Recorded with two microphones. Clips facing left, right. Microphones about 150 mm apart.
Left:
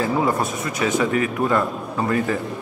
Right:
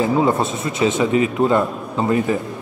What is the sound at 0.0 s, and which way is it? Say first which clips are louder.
A man's voice: right 4 dB; 25° right (ahead or behind).